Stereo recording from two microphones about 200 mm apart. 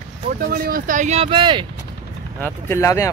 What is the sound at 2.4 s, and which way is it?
Speech, 10° left (ahead or behind).